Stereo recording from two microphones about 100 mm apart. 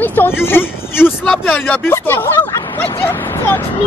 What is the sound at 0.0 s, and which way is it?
Speech, 20° left (ahead or behind).